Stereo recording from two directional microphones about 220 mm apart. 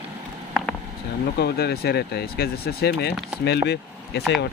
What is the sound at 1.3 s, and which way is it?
Speech, 45° left (ahead or behind).